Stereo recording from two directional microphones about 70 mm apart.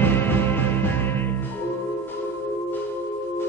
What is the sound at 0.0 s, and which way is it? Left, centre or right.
Music, left.